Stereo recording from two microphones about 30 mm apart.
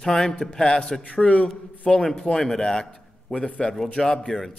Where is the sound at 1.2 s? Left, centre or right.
Left.